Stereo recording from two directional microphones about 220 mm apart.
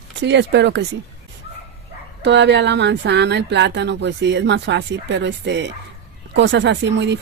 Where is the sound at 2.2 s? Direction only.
50° right (ahead or behind).